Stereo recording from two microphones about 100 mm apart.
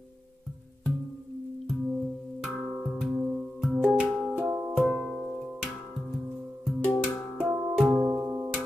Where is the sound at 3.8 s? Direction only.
15° right (ahead or behind).